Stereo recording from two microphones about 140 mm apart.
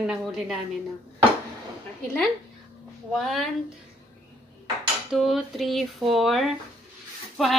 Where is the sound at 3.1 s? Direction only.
Centre (ahead or behind).